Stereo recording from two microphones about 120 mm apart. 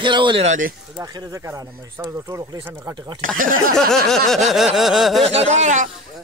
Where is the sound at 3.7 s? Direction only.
5° left (ahead or behind).